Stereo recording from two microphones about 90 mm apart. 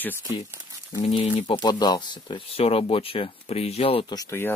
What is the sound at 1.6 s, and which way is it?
Speech, 50° left (ahead or behind).